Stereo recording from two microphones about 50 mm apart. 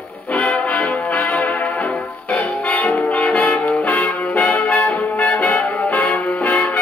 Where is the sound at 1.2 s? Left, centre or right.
Centre.